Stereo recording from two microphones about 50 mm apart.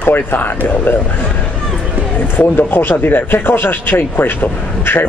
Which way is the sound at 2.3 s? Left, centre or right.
Left.